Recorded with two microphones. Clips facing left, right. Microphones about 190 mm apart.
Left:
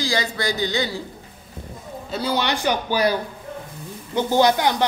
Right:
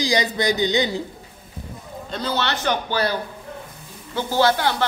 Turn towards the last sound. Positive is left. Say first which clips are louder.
# left 2 dB
turn(degrees=15)  # may be behind; listen again after turning